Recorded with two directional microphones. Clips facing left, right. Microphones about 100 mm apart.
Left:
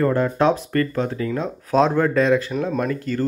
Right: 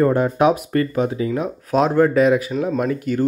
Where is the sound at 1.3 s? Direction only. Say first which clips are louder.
Right 1 dB; 5° right (ahead or behind).